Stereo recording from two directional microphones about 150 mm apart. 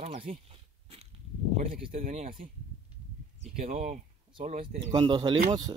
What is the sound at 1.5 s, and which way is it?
Speech, 70° right (ahead or behind).